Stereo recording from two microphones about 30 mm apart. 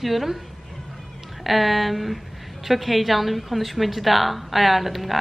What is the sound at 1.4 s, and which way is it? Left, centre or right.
A woman's voice, centre.